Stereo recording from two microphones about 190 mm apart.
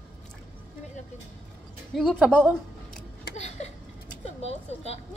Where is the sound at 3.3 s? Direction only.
35° left (ahead or behind).